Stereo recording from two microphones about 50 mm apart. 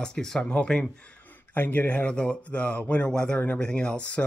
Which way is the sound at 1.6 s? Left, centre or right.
Left.